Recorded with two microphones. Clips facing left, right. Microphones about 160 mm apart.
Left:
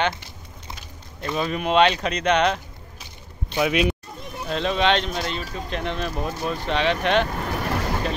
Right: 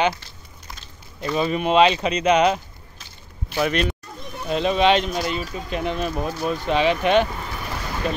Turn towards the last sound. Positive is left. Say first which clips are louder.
# left 6 dB
turn(degrees=65)  # may be behind; listen again after turning